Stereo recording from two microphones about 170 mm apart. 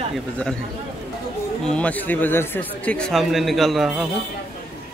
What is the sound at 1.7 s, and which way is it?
Speech, 5° left (ahead or behind).